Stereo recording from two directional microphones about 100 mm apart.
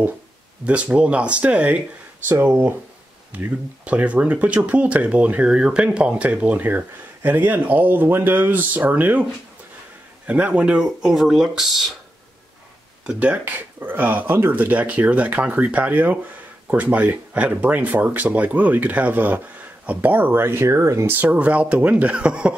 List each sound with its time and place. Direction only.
0.7 s speech: 15° right (ahead or behind)
13.0 s speech: 10° right (ahead or behind); by 21.1 s 30° right (ahead or behind)
21.1 s speech: 15° right (ahead or behind)